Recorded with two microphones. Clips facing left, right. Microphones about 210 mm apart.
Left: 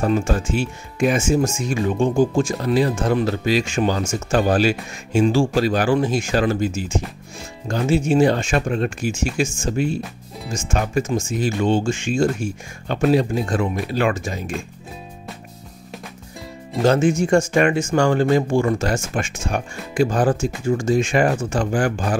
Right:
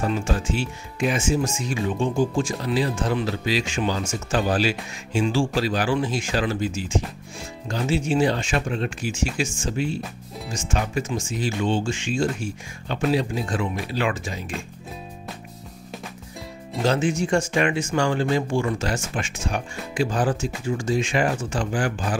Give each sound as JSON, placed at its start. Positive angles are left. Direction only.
{"t": 0.0, "sound": "speech", "side_deg": 50}
{"t": 16.8, "sound": "speech", "side_deg": 50}